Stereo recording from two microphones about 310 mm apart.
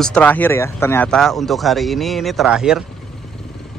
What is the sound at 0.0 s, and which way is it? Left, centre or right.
Speech, centre.